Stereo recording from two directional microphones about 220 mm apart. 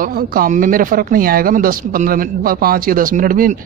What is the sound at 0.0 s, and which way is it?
Speech, 40° right (ahead or behind).